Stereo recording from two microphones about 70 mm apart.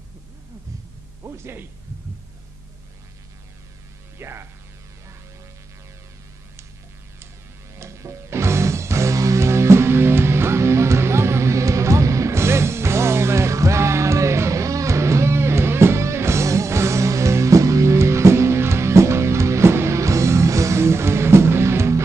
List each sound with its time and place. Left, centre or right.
1.2 s speech: right
4.2 s hum: right
7.8 s music: right